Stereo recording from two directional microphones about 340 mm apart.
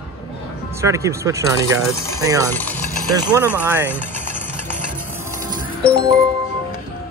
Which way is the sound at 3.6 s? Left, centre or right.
Centre.